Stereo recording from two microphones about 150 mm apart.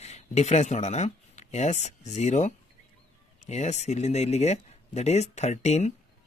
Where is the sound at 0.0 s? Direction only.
50° left (ahead or behind).